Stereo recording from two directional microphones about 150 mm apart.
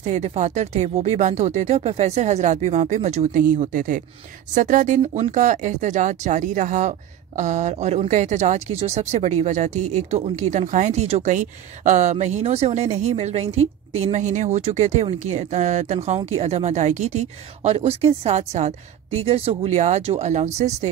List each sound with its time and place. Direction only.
0.0 s speech: 50° right (ahead or behind)